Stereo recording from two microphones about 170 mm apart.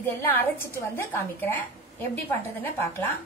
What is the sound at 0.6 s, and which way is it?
Speech, 15° left (ahead or behind).